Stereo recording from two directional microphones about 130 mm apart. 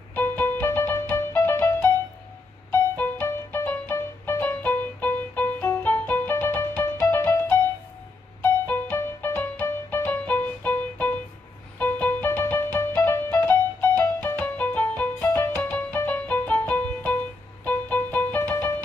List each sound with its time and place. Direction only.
0.1 s music: 15° left (ahead or behind)
18.5 s music: 25° left (ahead or behind)